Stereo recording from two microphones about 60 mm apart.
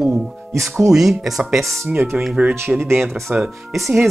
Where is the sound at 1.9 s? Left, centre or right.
Right.